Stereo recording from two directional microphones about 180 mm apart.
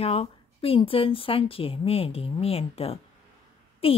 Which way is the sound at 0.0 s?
35° left (ahead or behind).